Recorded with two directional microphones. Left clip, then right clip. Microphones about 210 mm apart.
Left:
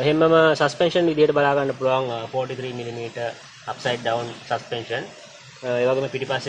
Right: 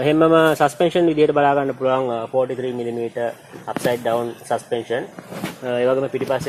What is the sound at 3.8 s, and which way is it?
Speech, 20° right (ahead or behind).